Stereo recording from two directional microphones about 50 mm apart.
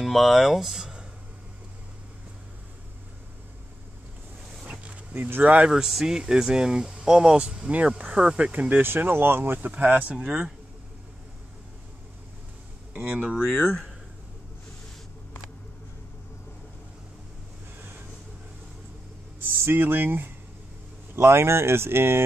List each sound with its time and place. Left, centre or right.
0.0 s speech: centre
5.1 s speech: right
5.7 s speech: centre; by 8.8 s right
8.8 s speech: right
10.2 s speech: centre
12.9 s speech: right
19.4 s a sound: right
19.8 s speech: right
21.2 s speech: right